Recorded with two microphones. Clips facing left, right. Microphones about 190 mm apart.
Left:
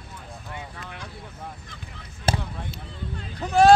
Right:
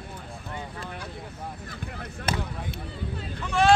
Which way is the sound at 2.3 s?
30° left (ahead or behind).